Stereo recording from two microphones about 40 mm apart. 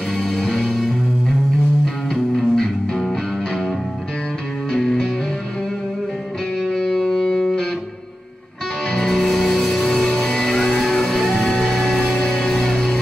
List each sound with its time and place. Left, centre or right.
0.2 s music: centre
2.3 s music: centre
4.7 s music: centre
6.8 s music: centre
8.9 s music: centre
12.2 s music: centre